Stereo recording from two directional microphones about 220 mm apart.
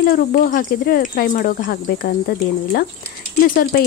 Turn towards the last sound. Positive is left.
turn(degrees=45)  # may be behind; listen again after turning